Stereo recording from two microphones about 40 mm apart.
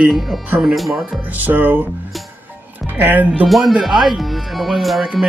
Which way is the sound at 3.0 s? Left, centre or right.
Right.